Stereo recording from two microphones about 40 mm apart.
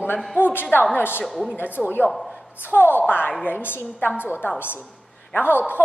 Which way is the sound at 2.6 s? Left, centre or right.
Left.